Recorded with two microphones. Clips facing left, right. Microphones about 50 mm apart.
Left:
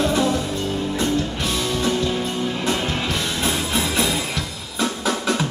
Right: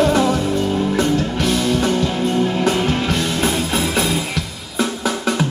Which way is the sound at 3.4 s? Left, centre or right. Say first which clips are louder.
Right 3 dB; right.